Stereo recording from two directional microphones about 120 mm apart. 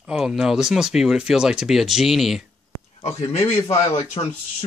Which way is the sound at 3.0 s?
65° left (ahead or behind).